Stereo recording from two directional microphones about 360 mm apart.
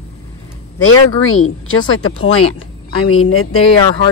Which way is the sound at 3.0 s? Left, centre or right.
Left.